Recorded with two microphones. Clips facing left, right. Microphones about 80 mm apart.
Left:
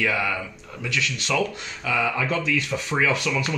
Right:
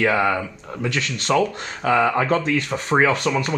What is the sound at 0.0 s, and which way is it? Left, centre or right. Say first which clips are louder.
Speech: right 6 dB; right.